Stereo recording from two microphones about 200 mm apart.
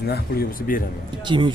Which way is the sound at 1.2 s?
25° right (ahead or behind).